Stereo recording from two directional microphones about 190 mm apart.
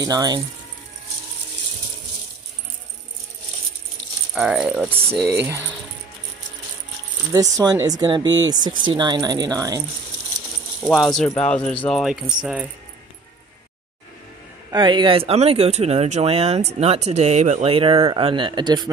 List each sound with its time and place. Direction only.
0.0 s speech: 20° right (ahead or behind)
4.4 s speech: 5° right (ahead or behind)
7.3 s speech: 20° right (ahead or behind)
10.8 s speech: centre (ahead or behind)
14.7 s speech: 25° right (ahead or behind)